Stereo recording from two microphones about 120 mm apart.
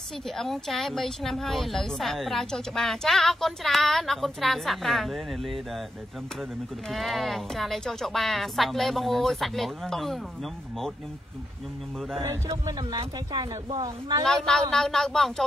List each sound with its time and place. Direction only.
0.4 s speech: centre (ahead or behind)
6.9 s speech: centre (ahead or behind)
12.2 s speech: 30° right (ahead or behind)
14.2 s speech: 5° left (ahead or behind)